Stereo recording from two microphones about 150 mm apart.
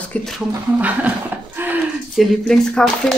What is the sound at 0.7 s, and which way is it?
Speech, 10° right (ahead or behind).